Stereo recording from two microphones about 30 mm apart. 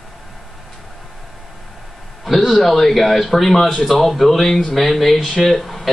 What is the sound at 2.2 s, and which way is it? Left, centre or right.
A man's voice, centre.